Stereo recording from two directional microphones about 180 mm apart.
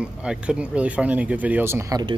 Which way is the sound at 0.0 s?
5° right (ahead or behind).